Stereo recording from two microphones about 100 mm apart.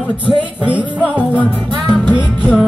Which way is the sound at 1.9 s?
5° right (ahead or behind).